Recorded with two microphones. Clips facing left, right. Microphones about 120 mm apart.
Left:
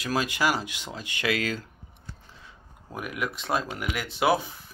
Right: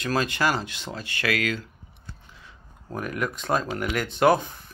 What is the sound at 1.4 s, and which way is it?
Speech, 35° left (ahead or behind).